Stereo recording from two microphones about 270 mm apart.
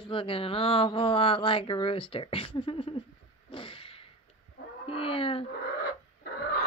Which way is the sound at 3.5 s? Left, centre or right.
Centre.